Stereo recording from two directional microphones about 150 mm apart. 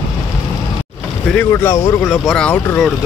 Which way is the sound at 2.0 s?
5° left (ahead or behind).